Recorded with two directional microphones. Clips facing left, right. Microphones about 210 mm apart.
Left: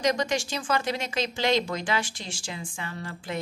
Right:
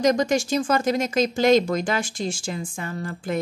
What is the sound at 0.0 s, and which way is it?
Speech, 45° right (ahead or behind).